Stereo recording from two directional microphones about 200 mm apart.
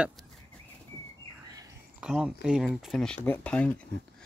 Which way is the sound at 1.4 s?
20° right (ahead or behind).